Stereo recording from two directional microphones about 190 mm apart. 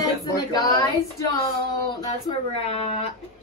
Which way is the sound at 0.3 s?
20° left (ahead or behind).